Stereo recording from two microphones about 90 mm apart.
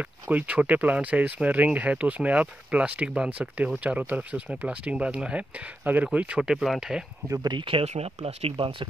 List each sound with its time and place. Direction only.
0.3 s speech: 15° right (ahead or behind)
7.4 s speech: 70° right (ahead or behind)